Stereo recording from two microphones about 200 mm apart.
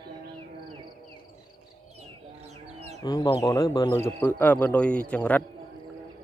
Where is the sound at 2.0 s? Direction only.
35° right (ahead or behind).